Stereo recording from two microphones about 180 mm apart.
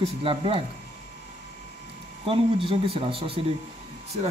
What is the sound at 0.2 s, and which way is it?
Speech, 30° right (ahead or behind).